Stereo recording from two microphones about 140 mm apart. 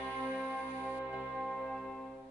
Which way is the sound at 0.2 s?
15° right (ahead or behind).